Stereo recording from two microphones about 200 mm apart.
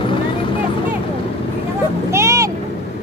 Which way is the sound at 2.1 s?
15° right (ahead or behind).